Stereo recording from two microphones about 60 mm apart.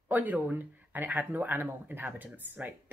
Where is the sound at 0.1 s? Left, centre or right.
Right.